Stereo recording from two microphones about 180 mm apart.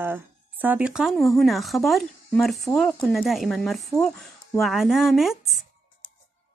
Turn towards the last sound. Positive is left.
turn(degrees=0)  # may be behind; listen again after turning